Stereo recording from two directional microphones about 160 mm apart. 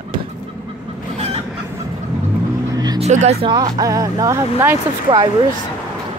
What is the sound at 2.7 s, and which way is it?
Vehicle, 25° right (ahead or behind).